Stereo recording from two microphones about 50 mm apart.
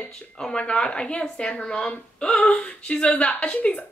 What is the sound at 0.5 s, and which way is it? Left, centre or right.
A woman's voice, left.